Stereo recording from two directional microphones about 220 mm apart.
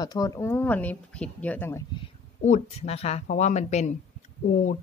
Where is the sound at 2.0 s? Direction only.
30° left (ahead or behind).